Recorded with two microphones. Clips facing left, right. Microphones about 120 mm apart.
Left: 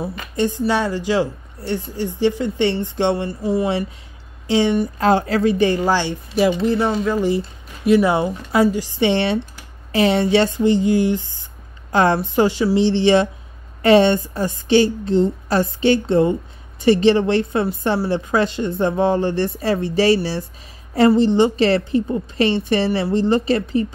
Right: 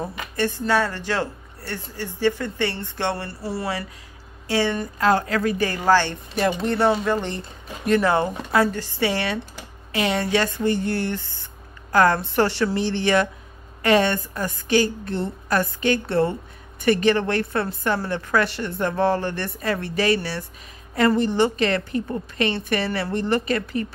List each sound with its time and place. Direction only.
0.0 s a woman's voice: 15° left (ahead or behind)
4.9 s a woman's voice: 30° left (ahead or behind); by 12.8 s 15° left (ahead or behind)
12.8 s speech: 25° left (ahead or behind)